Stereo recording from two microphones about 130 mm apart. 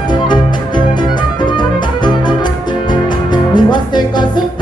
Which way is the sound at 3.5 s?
35° left (ahead or behind).